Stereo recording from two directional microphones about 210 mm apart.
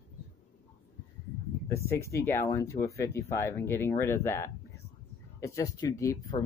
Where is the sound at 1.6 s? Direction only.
15° left (ahead or behind).